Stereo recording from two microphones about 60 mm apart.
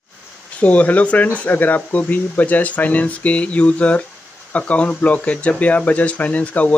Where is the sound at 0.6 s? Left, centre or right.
Left.